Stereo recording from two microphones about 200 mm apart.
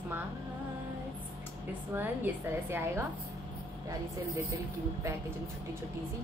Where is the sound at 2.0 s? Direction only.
10° right (ahead or behind).